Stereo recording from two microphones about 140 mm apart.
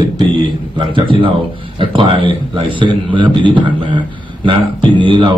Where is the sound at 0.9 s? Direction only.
40° right (ahead or behind).